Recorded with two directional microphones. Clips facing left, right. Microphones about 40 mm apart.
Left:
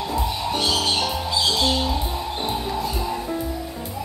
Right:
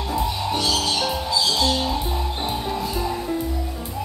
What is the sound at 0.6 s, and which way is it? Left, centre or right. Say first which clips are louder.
Music: left 1 dB; left.